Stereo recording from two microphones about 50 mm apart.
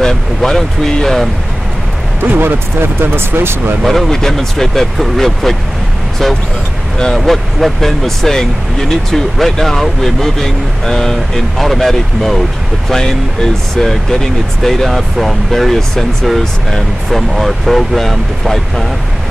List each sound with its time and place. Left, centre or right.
0.0 s speech: centre
2.2 s speech: right
3.8 s speech: centre
7.2 s speech: centre